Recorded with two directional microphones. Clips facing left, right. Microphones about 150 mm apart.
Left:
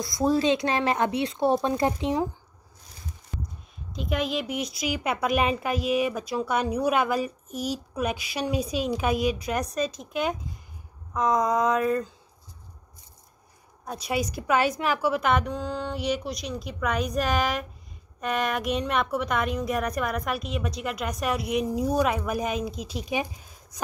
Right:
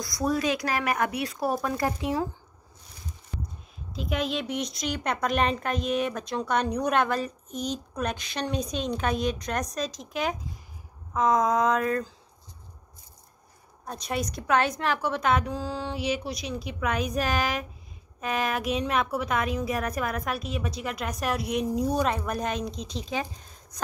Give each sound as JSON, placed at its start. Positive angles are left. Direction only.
{"t": 0.0, "sound": "speech", "side_deg": 25}
{"t": 3.9, "sound": "a woman's voice", "side_deg": 0}
{"t": 13.8, "sound": "a woman's voice", "side_deg": 5}